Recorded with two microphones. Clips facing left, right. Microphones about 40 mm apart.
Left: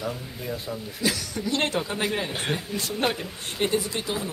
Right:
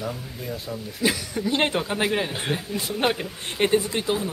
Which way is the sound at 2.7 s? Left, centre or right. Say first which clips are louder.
Right 4 dB; centre.